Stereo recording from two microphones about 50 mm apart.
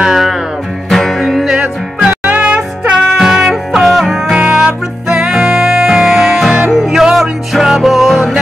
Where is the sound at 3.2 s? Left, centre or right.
Centre.